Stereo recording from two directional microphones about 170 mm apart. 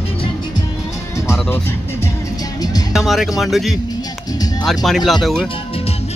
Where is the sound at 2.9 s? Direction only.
Centre (ahead or behind).